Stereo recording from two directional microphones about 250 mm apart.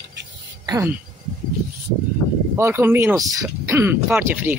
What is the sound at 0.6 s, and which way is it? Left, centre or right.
Speech, centre.